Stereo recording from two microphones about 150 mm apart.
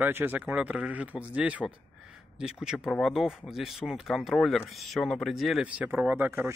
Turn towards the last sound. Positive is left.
turn(degrees=-15)  # may be behind; listen again after turning